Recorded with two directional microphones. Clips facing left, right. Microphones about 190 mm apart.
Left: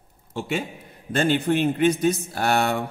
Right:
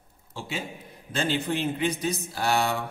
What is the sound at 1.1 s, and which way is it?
A man's voice, 60° left (ahead or behind).